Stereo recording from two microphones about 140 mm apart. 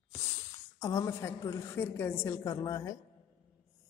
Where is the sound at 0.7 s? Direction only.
25° left (ahead or behind).